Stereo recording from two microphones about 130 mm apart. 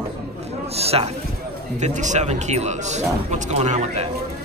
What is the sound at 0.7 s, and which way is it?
Speech, 50° right (ahead or behind).